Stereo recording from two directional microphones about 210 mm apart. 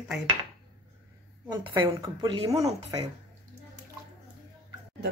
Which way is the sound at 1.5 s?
20° right (ahead or behind).